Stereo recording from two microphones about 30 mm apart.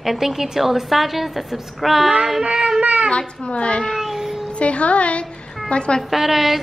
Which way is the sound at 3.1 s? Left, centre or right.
Left.